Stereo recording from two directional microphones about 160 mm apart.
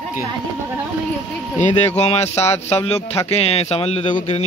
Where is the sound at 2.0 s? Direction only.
40° left (ahead or behind).